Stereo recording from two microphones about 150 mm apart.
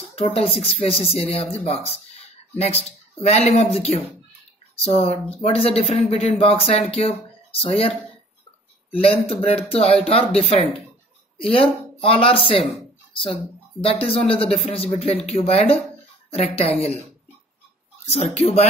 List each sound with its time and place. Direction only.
0.1 s speech: 40° left (ahead or behind)
8.9 s speech: 40° left (ahead or behind)
13.8 s speech: 40° left (ahead or behind)
18.0 s speech: 45° left (ahead or behind)